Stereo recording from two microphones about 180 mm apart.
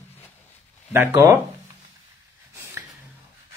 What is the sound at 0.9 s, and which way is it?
Speech, 15° right (ahead or behind).